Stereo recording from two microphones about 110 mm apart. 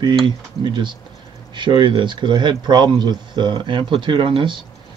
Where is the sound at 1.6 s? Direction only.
45° right (ahead or behind).